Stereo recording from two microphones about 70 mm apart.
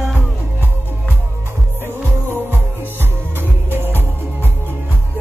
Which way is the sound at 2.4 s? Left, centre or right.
Right.